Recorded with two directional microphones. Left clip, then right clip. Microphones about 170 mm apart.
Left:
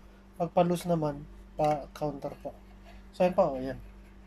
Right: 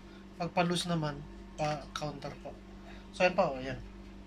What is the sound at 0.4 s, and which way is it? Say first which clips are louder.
Speech: left 5 dB; 35° left (ahead or behind).